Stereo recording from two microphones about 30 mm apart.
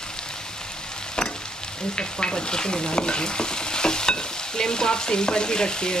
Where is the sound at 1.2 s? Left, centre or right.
Left.